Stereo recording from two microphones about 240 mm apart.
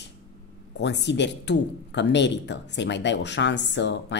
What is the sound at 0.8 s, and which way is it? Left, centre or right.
Speech, left.